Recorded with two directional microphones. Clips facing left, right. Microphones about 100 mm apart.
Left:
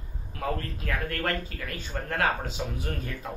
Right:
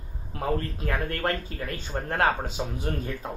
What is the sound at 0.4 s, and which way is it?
Speech, 30° right (ahead or behind).